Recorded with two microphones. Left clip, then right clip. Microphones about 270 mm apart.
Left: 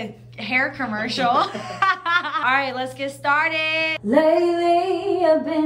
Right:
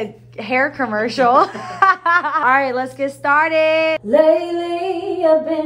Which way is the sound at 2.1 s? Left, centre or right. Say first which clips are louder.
Right 5 dB; centre.